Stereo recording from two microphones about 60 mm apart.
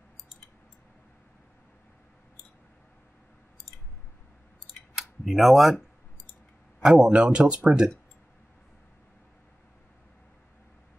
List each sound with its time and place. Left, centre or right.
4.9 s a man's voice: centre